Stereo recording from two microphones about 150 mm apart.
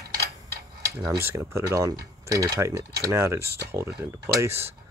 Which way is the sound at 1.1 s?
15° right (ahead or behind).